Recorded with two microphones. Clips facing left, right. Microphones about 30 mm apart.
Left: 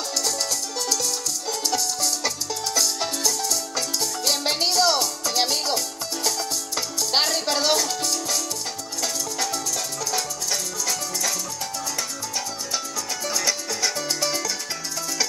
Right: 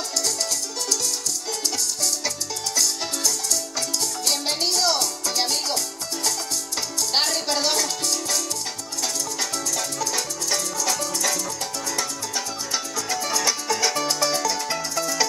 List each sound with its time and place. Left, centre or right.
0.7 s music: centre
2.2 s music: centre
7.0 s music: centre
12.7 s music: right
14.0 s music: centre